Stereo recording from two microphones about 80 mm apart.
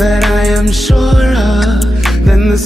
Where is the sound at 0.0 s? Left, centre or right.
Centre.